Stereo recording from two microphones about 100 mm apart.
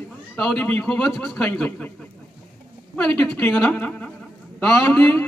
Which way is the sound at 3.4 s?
20° left (ahead or behind).